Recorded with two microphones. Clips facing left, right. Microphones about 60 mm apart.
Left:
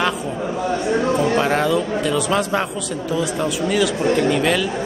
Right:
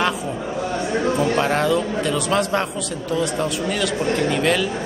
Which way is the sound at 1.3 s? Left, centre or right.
Centre.